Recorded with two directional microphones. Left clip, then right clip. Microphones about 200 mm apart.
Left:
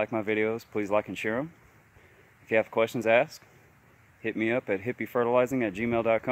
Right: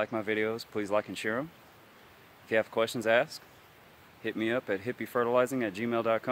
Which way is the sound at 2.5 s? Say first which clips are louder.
Left 3 dB; 5° right (ahead or behind).